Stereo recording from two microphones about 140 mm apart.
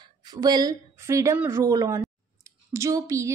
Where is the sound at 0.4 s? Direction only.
30° right (ahead or behind).